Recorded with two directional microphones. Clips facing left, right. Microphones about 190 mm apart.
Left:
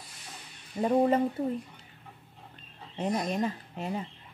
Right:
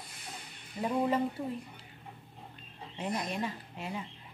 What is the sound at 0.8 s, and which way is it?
Speech, 40° left (ahead or behind).